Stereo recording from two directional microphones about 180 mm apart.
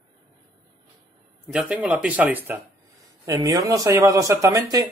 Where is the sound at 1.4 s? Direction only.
5° right (ahead or behind).